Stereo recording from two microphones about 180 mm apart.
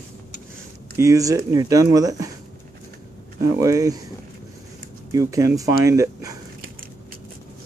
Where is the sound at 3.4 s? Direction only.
20° right (ahead or behind).